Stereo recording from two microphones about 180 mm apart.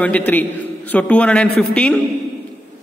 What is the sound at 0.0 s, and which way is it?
A man's voice, 10° left (ahead or behind).